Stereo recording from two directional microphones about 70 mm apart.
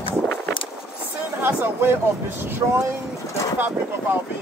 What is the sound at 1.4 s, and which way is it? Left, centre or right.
Speech, right.